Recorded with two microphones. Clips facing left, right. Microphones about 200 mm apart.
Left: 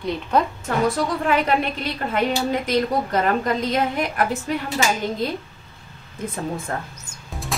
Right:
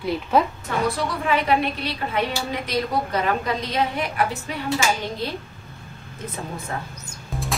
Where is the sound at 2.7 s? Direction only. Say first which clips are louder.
Even; 45° left (ahead or behind).